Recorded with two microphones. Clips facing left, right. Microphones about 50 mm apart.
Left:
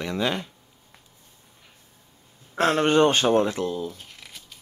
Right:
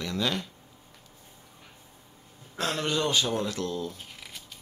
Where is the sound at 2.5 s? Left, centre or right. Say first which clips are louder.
Left 9 dB; left.